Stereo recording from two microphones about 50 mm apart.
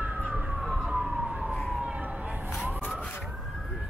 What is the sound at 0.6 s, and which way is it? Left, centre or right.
Emergency vehicle, centre.